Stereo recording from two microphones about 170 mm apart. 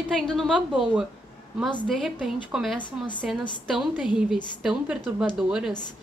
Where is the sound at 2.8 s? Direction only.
25° left (ahead or behind).